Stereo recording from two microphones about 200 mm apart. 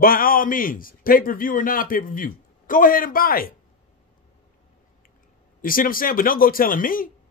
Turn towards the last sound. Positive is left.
turn(degrees=45)  # may be behind; listen again after turning